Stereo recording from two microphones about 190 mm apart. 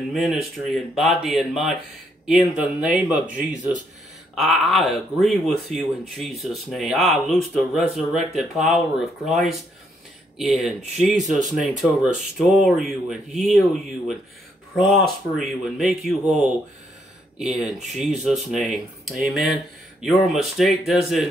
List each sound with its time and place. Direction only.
0.1 s speech: centre (ahead or behind)
11.1 s speech: 40° right (ahead or behind)
11.5 s speech: 5° right (ahead or behind)
15.4 s speech: centre (ahead or behind)
17.4 s speech: centre (ahead or behind)